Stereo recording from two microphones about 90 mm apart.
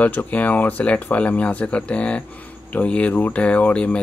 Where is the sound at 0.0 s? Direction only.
15° left (ahead or behind).